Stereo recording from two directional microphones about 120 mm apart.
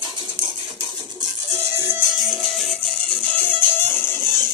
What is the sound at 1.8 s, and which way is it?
Music, 20° right (ahead or behind).